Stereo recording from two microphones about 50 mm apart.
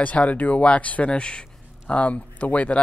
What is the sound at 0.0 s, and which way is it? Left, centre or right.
A man's voice, left.